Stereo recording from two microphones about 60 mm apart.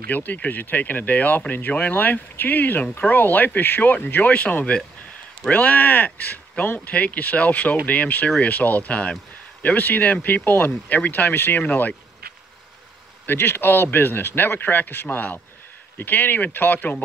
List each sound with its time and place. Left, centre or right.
0.1 s speech: left
13.3 s speech: left